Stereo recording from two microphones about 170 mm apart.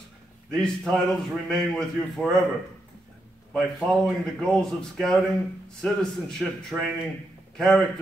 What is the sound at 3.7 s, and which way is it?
Speech, centre (ahead or behind).